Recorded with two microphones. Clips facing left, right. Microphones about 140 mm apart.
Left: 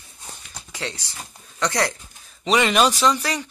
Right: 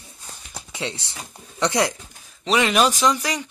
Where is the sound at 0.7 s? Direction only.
20° right (ahead or behind).